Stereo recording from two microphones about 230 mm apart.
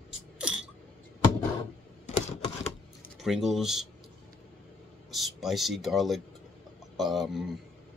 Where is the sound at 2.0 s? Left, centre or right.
Left.